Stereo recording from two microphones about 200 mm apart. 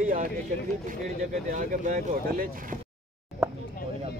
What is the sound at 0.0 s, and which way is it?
Speech, 40° right (ahead or behind).